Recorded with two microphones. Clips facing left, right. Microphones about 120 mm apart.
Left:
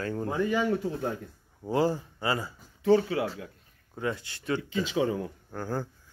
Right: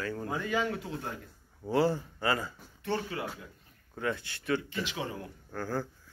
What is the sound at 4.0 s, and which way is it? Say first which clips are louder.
A man's voice: left 2 dB; 20° left (ahead or behind).